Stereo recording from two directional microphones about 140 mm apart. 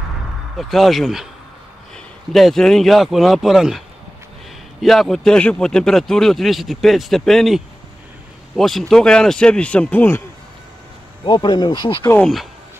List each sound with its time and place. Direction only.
0.6 s speech: centre (ahead or behind)
4.8 s speech: centre (ahead or behind)
11.2 s speech: 30° left (ahead or behind)